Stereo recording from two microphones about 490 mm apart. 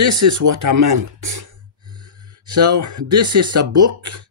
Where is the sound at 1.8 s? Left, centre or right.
Centre.